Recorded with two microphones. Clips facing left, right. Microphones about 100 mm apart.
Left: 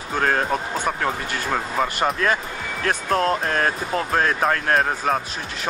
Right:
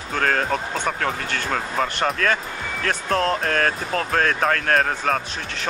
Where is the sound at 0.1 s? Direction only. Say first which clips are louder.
Left 1 dB; 15° left (ahead or behind).